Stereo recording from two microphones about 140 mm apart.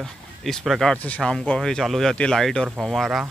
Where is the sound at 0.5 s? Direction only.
Centre (ahead or behind).